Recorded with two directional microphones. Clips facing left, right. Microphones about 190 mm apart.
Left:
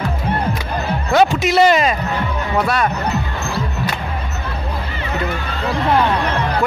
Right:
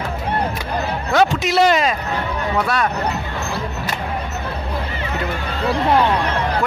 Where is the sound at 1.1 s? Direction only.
5° left (ahead or behind).